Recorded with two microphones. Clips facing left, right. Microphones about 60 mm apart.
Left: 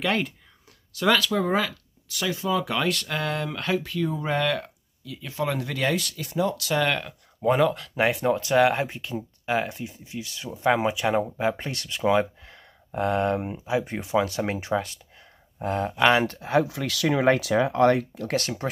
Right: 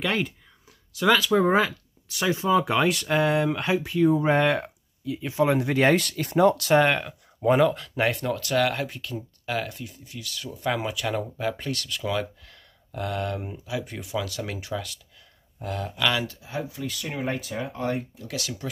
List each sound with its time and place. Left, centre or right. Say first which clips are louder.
0.0 s speech: left 1 dB; centre
1.3 s speech: right 4 dB; right
5.8 s speech: right 5 dB; right
7.0 s speech: right 1 dB; centre
8.3 s speech: left 4 dB; left
16.3 s speech: left 10 dB; left